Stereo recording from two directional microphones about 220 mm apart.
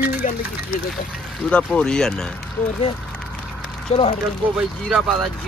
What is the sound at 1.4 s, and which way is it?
Speech, 5° left (ahead or behind).